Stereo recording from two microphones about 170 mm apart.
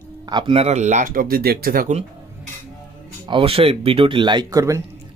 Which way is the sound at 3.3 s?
30° right (ahead or behind).